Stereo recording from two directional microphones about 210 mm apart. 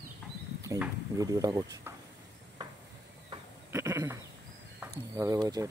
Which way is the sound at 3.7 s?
15° right (ahead or behind).